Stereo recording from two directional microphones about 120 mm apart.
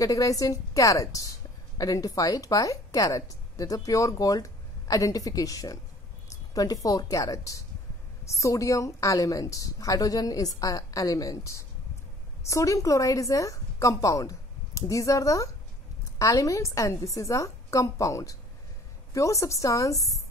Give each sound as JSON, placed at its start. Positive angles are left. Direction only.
{"t": 0.0, "sound": "a woman's voice", "side_deg": 30}